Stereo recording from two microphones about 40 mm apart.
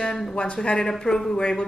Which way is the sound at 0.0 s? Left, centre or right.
Centre.